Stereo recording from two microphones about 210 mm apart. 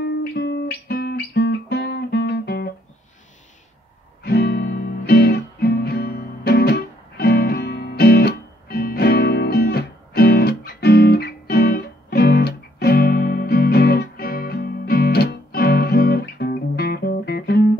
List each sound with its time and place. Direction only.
0.0 s music: 50° left (ahead or behind)
4.2 s music: 50° left (ahead or behind)